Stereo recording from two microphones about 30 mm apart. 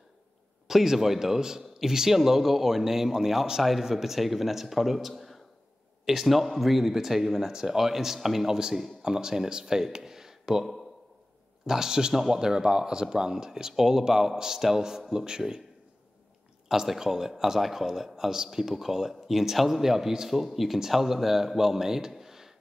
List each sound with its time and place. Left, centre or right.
0.7 s a man's voice: centre
9.0 s speech: right
11.6 s speech: centre
16.8 s speech: centre